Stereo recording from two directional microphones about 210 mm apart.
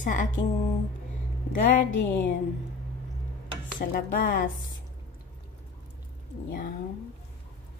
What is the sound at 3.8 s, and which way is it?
Music, 40° left (ahead or behind).